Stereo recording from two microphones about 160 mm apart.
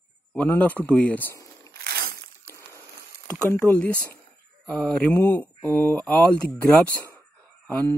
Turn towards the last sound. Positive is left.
turn(degrees=10)  # may be behind; listen again after turning